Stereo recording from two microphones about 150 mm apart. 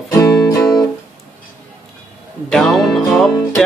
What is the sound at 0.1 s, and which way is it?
Music, 20° left (ahead or behind).